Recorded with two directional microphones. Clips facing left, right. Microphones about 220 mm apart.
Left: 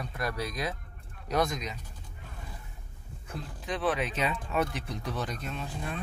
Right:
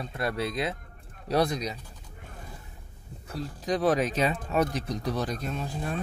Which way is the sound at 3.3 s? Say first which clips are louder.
Right 7 dB; 40° right (ahead or behind).